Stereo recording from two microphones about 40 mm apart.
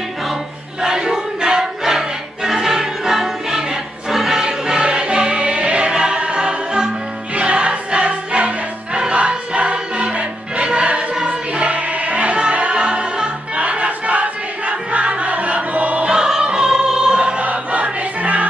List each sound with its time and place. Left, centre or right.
0.3 s a sound: centre
4.1 s music: centre; by 11.1 s right
11.2 s choir: right
14.7 s music: right
16.1 s music: centre
17.4 s music: right